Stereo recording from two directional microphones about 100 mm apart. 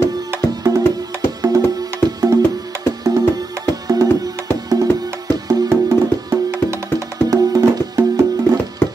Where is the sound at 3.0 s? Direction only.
35° right (ahead or behind).